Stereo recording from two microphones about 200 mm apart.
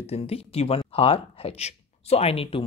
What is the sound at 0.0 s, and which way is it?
Speech, 30° left (ahead or behind).